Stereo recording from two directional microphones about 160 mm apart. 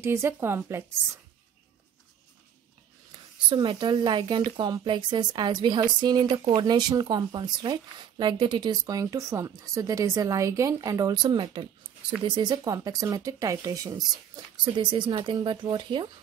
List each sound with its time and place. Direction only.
0.0 s speech: 15° right (ahead or behind)
3.4 s speech: 30° right (ahead or behind)